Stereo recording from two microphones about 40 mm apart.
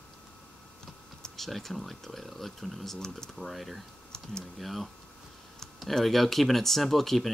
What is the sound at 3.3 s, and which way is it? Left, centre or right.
Speech, centre.